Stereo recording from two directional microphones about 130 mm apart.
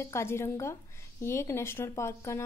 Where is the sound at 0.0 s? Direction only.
20° left (ahead or behind).